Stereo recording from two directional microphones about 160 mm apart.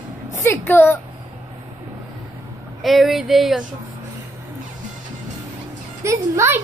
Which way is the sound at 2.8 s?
Centre (ahead or behind).